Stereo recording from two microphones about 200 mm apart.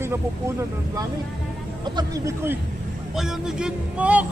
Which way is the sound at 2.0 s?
15° right (ahead or behind).